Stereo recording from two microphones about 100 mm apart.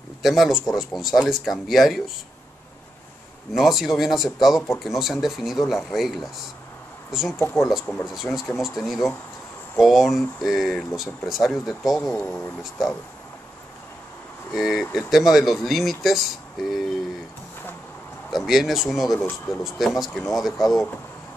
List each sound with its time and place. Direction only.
0.2 s speech: centre (ahead or behind)
3.5 s speech: centre (ahead or behind)
14.5 s speech: centre (ahead or behind)
18.3 s speech: centre (ahead or behind)
19.1 s speech: 20° left (ahead or behind)
19.6 s speech: centre (ahead or behind)